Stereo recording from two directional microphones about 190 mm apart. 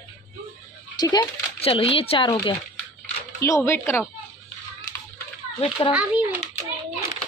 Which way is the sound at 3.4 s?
15° left (ahead or behind).